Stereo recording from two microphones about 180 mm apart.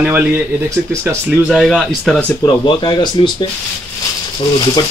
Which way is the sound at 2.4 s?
25° left (ahead or behind).